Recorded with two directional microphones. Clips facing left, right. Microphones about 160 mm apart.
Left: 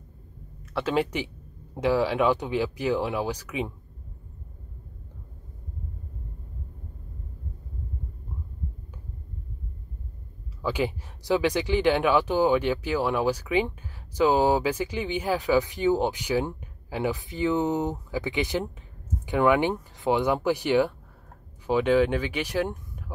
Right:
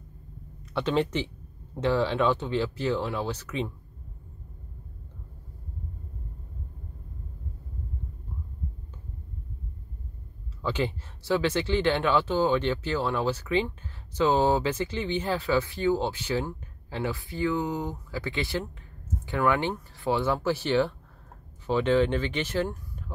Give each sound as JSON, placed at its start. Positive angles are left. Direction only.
{"t": 0.7, "sound": "speech", "side_deg": 5}
{"t": 10.6, "sound": "speech", "side_deg": 10}